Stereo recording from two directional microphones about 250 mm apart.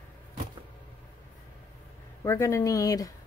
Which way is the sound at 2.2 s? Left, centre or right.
Centre.